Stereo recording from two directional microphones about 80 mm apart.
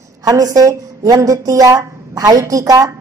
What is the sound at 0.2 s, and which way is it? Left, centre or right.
A woman's voice, right.